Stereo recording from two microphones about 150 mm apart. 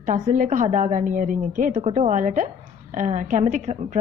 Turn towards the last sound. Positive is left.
turn(degrees=-55)  # may be behind; listen again after turning